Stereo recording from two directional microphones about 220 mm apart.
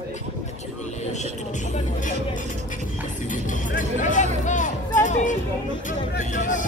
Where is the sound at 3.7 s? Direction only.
35° left (ahead or behind).